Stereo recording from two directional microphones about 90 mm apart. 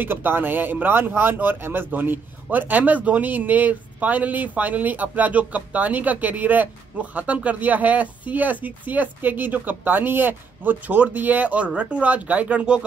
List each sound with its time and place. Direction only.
0.0 s speech: 20° right (ahead or behind)